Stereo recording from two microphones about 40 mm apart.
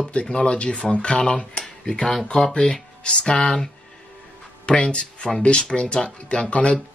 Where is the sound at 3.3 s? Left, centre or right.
Centre.